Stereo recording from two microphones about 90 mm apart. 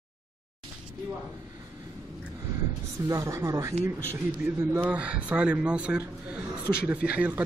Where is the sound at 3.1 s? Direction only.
35° right (ahead or behind).